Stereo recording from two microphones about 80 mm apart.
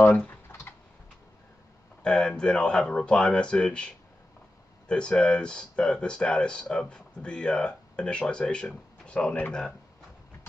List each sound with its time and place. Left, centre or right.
0.0 s speech: centre
2.0 s speech: centre